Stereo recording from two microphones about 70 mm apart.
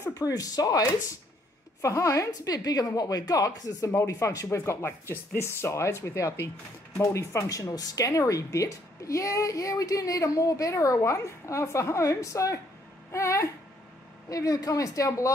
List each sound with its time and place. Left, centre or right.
0.1 s speech: left
1.8 s a woman's voice: left
2.5 s a woman's voice: left
4.5 s a woman's voice: left
7.4 s a woman's voice: left
14.3 s a woman's voice: left